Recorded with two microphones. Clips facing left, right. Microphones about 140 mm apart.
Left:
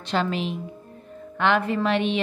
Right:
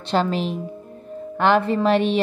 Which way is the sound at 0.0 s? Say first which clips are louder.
Right 4 dB; 35° right (ahead or behind).